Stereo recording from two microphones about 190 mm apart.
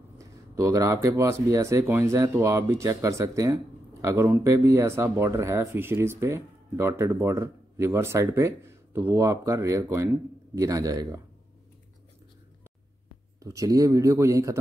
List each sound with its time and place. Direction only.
0.2 s speech: 15° right (ahead or behind)
13.4 s speech: 15° right (ahead or behind)